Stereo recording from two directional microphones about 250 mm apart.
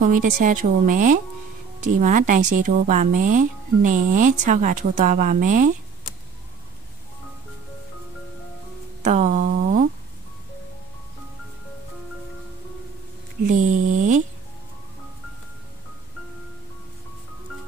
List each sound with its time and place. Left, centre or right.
0.0 s speech: right
9.0 s speech: right
13.5 s speech: right